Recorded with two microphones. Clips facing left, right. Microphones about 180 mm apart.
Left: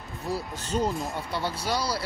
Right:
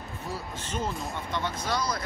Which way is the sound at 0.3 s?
35° left (ahead or behind).